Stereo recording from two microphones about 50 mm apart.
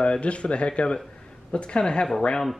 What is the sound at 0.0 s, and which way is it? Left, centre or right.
Speech, left.